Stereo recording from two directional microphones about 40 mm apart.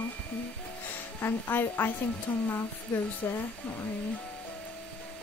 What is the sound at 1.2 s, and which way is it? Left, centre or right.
Speech, left.